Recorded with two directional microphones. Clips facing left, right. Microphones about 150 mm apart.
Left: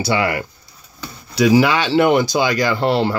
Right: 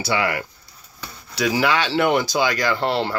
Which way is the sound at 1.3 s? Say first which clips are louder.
Left 6 dB; 15° left (ahead or behind).